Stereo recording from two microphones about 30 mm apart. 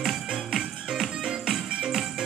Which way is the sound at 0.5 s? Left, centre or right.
Centre.